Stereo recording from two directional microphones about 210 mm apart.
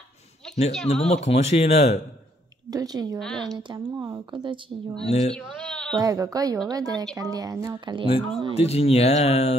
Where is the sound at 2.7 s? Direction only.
15° right (ahead or behind).